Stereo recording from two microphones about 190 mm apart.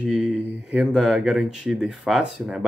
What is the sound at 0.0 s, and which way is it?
Speech, 5° right (ahead or behind).